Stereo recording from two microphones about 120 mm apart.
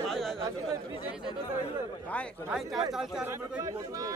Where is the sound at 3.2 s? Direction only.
25° right (ahead or behind).